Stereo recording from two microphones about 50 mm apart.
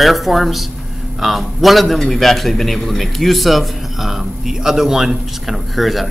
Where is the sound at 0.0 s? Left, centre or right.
Centre.